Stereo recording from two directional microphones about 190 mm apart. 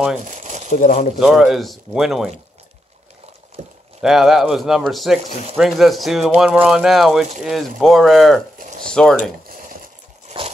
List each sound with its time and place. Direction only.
0.2 s crumpling: 40° right (ahead or behind)
0.7 s speech: 40° left (ahead or behind)
1.2 s speech: centre (ahead or behind)
3.6 s a sound: 35° right (ahead or behind)
4.0 s speech: centre (ahead or behind)
10.2 s a sound: 30° right (ahead or behind)